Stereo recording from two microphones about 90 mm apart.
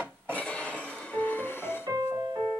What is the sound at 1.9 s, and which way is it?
Music, 35° right (ahead or behind).